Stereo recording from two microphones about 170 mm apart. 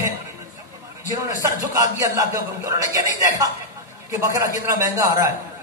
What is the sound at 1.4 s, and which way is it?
A man's voice, 20° right (ahead or behind).